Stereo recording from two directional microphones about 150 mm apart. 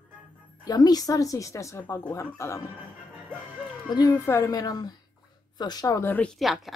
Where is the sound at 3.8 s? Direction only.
25° left (ahead or behind).